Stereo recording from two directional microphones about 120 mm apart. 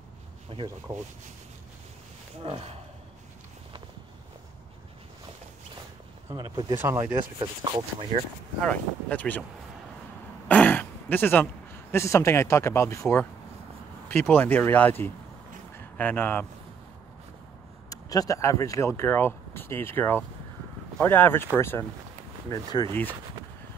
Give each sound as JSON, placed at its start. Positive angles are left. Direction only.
{"t": 2.4, "sound": "speech", "side_deg": -50}
{"t": 6.3, "sound": "speech", "side_deg": -35}
{"t": 6.8, "sound": "speech", "side_deg": -25}
{"t": 7.3, "sound": "speech", "side_deg": -45}
{"t": 8.6, "sound": "speech", "side_deg": 10}
{"t": 10.5, "sound": "throat clearing", "side_deg": 15}
{"t": 11.9, "sound": "speech", "side_deg": 25}
{"t": 17.8, "sound": "speech", "side_deg": 30}
{"t": 22.5, "sound": "speech", "side_deg": 35}